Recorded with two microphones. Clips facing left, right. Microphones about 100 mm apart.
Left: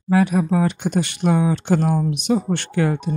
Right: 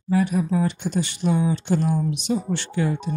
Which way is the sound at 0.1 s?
90° left.